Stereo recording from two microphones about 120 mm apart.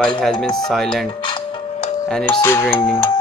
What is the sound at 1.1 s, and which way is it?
Music, 45° left (ahead or behind).